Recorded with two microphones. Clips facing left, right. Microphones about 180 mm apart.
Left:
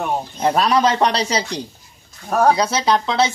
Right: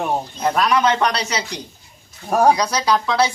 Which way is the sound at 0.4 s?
30° left (ahead or behind).